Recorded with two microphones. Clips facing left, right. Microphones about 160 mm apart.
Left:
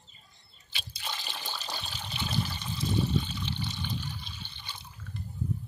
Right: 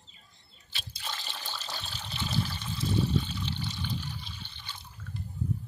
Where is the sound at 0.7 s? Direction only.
5° left (ahead or behind).